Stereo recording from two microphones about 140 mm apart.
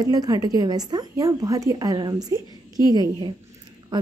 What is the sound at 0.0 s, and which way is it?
A woman's voice, 25° right (ahead or behind).